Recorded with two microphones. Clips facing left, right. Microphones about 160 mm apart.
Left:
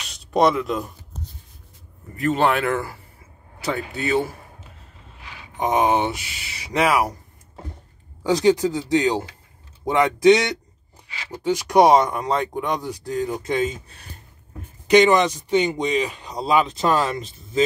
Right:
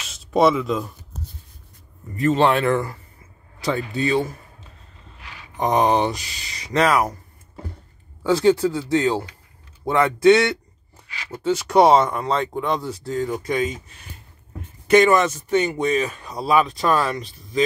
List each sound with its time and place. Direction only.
0.0 s a sound: centre (ahead or behind)
2.1 s speech: centre (ahead or behind)
5.6 s speech: centre (ahead or behind)
8.3 s speech: 20° left (ahead or behind)
14.9 s speech: 20° left (ahead or behind)